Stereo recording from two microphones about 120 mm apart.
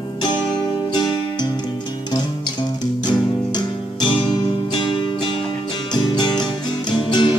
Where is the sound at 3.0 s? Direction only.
40° left (ahead or behind).